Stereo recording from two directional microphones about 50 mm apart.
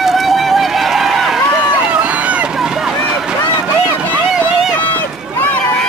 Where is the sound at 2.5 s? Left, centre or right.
Centre.